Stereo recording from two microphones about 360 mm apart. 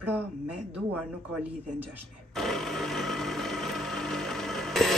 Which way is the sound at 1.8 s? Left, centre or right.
Centre.